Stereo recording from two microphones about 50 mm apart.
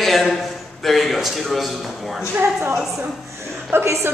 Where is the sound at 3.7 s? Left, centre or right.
Right.